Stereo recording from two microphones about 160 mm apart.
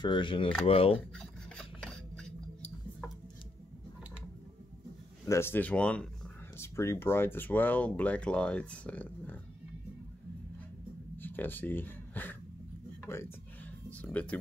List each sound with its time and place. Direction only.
0.0 s speech: 30° left (ahead or behind)
1.1 s filing: 5° left (ahead or behind)
5.2 s speech: 15° left (ahead or behind)
11.1 s a sound: 10° left (ahead or behind)